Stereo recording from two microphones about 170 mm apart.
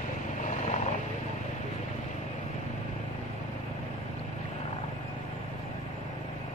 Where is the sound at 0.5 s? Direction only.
45° left (ahead or behind).